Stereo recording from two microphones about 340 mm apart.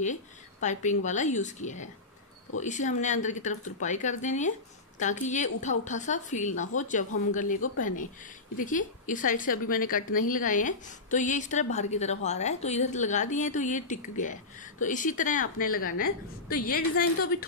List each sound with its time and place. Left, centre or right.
0.0 s speech: left